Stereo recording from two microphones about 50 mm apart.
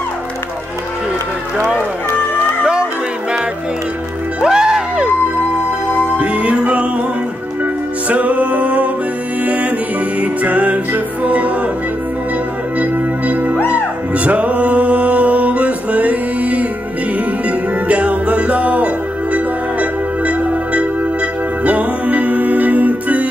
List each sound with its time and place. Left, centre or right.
2.6 s music: centre
4.4 s music: centre
6.1 s music: right
8.1 s music: right
10.2 s music: right
13.3 s music: right